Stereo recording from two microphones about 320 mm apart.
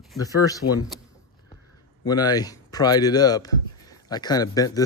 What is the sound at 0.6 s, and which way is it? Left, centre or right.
Speech, left.